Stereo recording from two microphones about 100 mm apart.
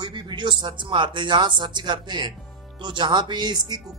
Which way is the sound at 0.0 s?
50° right (ahead or behind).